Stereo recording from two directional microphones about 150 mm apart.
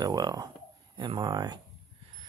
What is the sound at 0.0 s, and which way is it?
Speech, 25° right (ahead or behind).